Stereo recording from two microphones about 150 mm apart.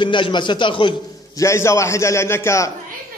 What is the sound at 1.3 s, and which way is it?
A man's voice, 20° left (ahead or behind).